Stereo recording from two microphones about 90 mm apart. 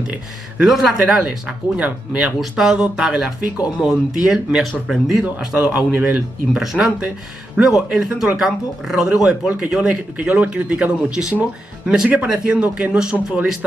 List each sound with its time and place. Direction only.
0.6 s a man's voice: 5° right (ahead or behind)
1.8 s a man's voice: 15° right (ahead or behind)
6.5 s speech: 5° right (ahead or behind)